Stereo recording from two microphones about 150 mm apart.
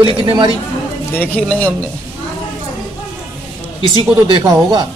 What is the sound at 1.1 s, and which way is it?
Speech, 10° left (ahead or behind).